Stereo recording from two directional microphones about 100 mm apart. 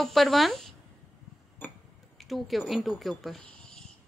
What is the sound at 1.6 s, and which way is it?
Tick-tock, 15° left (ahead or behind).